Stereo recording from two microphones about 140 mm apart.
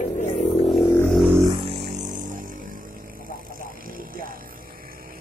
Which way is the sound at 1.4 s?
35° right (ahead or behind).